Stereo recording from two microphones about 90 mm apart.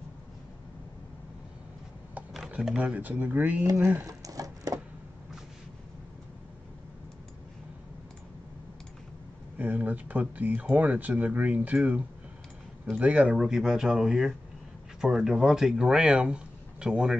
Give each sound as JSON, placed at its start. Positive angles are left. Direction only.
{"t": 2.5, "sound": "speech", "side_deg": -10}
{"t": 3.6, "sound": "speech", "side_deg": -35}
{"t": 4.0, "sound": "a sound", "side_deg": -40}
{"t": 9.6, "sound": "speech", "side_deg": -15}